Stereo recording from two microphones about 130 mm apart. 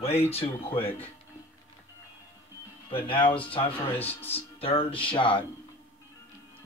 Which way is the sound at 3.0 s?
40° left (ahead or behind).